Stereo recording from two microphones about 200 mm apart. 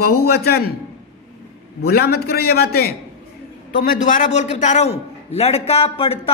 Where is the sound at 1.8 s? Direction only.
50° left (ahead or behind).